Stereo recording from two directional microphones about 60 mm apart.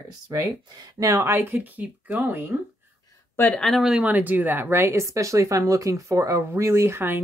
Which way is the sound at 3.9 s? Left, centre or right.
Right.